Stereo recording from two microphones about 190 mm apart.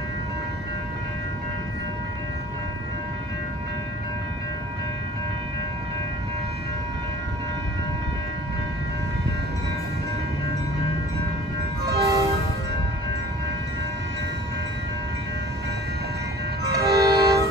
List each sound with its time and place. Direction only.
11.8 s train horn: 15° right (ahead or behind)
16.7 s train: 15° right (ahead or behind)